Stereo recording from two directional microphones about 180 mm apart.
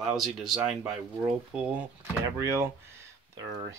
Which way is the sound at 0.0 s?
Centre (ahead or behind).